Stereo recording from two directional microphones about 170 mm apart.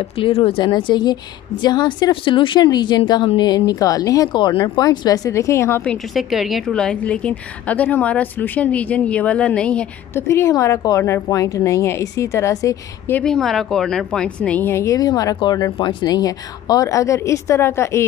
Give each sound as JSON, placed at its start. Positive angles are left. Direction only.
{"t": 0.0, "sound": "a woman's voice", "side_deg": 35}
{"t": 6.1, "sound": "a woman's voice", "side_deg": 0}